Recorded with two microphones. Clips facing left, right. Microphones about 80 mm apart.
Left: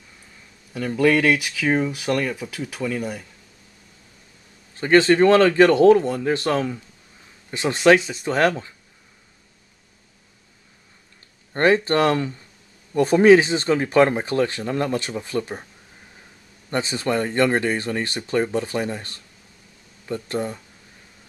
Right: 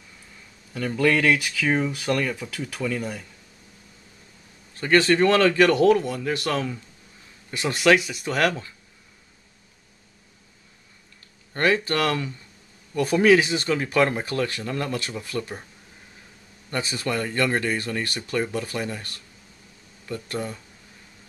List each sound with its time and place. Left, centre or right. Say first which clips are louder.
0.7 s speech: left 3 dB; centre
4.7 s speech: left 4 dB; left
11.5 s speech: left 5 dB; left
16.7 s speech: left 4 dB; left